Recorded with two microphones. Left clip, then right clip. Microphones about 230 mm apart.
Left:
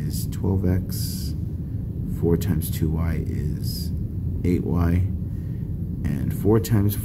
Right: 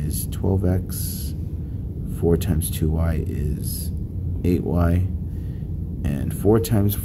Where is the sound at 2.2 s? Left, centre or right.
Centre.